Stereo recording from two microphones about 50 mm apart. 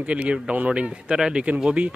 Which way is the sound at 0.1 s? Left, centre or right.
Right.